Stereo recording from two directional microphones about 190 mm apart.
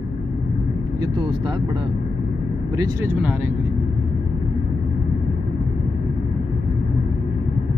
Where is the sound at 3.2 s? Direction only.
5° right (ahead or behind).